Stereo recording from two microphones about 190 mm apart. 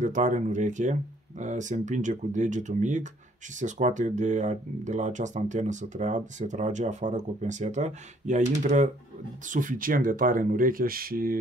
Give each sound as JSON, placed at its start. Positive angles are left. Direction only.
{"t": 0.0, "sound": "speech", "side_deg": -40}